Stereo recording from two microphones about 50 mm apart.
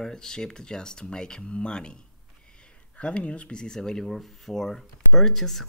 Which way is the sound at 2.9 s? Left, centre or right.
Left.